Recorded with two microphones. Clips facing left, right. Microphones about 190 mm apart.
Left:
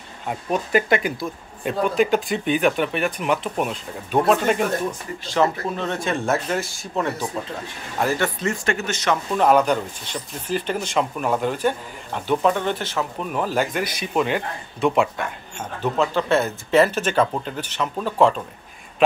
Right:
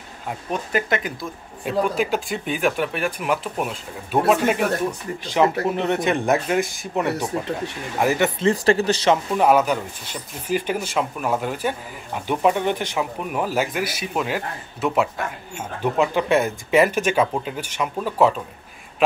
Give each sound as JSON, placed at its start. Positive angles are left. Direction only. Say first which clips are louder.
{"t": 0.5, "sound": "speech", "louder": "left 4 dB", "side_deg": 5}
{"t": 5.2, "sound": "speech", "louder": "right 2 dB", "side_deg": -15}
{"t": 8.0, "sound": "speech", "louder": "right 2 dB", "side_deg": -15}
{"t": 8.5, "sound": "speech", "louder": "right 6 dB", "side_deg": -35}
{"t": 9.4, "sound": "speech", "louder": "even", "side_deg": -10}